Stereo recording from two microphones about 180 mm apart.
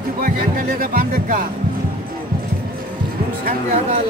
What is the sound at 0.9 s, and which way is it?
Music, 50° right (ahead or behind).